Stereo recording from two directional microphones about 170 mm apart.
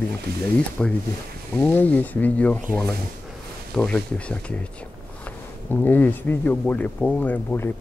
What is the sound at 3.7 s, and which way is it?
Speech, 5° left (ahead or behind).